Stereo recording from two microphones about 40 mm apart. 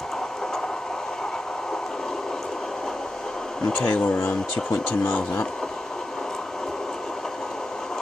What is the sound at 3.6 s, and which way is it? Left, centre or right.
Speech, centre.